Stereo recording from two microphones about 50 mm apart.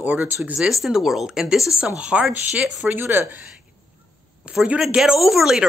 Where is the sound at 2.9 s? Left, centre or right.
Right.